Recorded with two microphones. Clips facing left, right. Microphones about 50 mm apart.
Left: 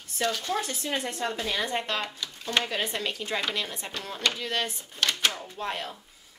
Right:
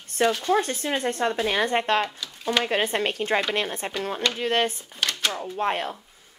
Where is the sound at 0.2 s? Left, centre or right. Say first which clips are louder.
Right 7 dB; right.